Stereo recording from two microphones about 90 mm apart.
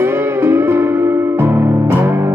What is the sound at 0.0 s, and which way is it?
Music, 25° right (ahead or behind).